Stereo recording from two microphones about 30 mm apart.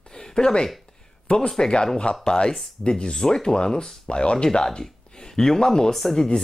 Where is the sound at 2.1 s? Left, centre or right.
Left.